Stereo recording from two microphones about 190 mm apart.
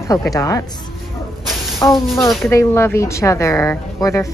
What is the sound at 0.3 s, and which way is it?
Speech, 15° left (ahead or behind).